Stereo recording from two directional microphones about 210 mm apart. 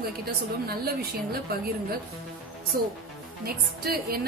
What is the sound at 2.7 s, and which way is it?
A woman's voice, 45° right (ahead or behind).